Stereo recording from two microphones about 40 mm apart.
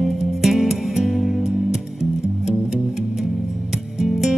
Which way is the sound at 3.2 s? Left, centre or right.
Centre.